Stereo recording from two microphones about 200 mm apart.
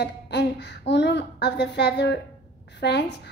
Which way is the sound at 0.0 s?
55° left (ahead or behind).